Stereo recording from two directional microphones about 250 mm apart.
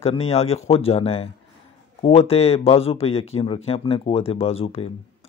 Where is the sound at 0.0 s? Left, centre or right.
Left.